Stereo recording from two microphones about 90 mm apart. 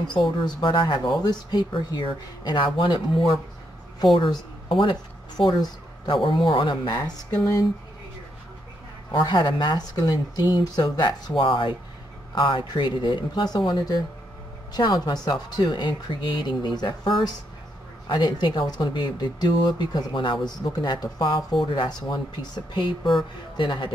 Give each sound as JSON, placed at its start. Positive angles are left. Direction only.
{"t": 0.6, "sound": "speech", "side_deg": 60}
{"t": 5.4, "sound": "speech", "side_deg": 55}
{"t": 6.1, "sound": "a man's voice", "side_deg": 70}
{"t": 9.1, "sound": "speech", "side_deg": 60}